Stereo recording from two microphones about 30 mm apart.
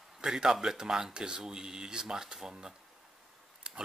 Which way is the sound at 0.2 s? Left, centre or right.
Right.